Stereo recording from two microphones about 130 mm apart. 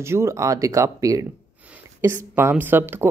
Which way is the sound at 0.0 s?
20° right (ahead or behind).